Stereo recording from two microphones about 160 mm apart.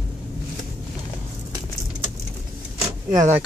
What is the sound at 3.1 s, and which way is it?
Speech, 20° right (ahead or behind).